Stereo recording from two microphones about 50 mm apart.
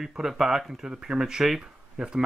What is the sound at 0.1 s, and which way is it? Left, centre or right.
Speech, centre.